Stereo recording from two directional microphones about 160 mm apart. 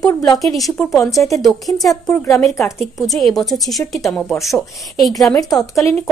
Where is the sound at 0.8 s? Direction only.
20° left (ahead or behind).